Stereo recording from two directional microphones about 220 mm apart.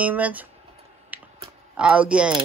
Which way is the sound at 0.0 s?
5° right (ahead or behind).